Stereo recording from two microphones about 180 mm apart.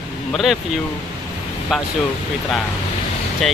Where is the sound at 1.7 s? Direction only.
Centre (ahead or behind).